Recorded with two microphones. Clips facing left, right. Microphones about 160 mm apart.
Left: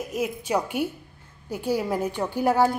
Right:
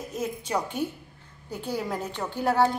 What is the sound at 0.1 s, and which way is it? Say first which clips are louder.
A woman's voice: left 3 dB; 10° left (ahead or behind).